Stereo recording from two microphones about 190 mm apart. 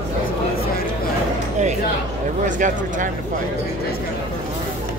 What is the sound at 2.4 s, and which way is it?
Speech, 40° right (ahead or behind).